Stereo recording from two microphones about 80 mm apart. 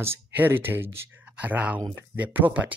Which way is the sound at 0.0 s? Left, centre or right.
Right.